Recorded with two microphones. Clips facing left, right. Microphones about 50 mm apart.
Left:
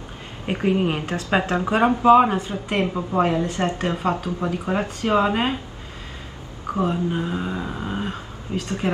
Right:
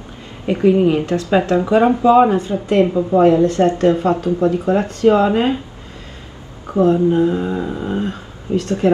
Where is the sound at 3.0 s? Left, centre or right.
Left.